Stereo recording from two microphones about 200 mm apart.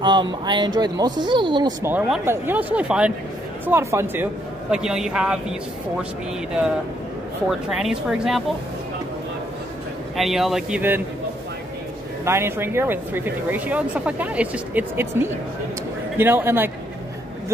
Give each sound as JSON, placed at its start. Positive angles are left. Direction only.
{"t": 0.0, "sound": "speech", "side_deg": -25}
{"t": 1.9, "sound": "a man's voice", "side_deg": -5}
{"t": 7.4, "sound": "a man's voice", "side_deg": 0}
{"t": 10.1, "sound": "a man's voice", "side_deg": 0}
{"t": 12.3, "sound": "speech", "side_deg": -10}